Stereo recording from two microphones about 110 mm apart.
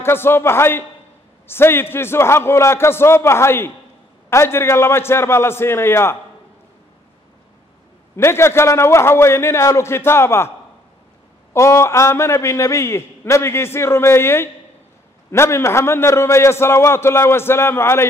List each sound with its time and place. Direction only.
0.0 s a man's voice: 20° left (ahead or behind)
8.2 s a man's voice: 25° left (ahead or behind)
11.5 s a man's voice: 25° left (ahead or behind)